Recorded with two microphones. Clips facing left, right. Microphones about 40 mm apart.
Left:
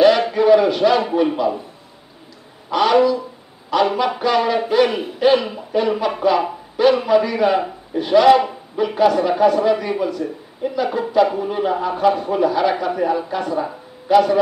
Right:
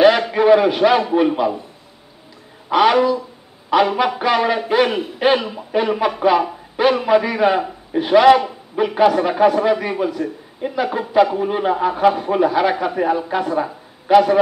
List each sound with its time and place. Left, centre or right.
0.3 s a sound: right
1.1 s a man's voice: centre
2.7 s a man's voice: centre